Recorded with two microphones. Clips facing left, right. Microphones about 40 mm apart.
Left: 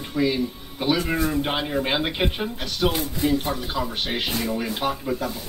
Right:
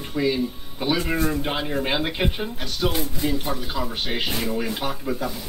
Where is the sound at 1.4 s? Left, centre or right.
Centre.